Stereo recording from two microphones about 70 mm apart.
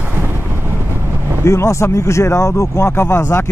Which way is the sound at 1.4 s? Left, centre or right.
Left.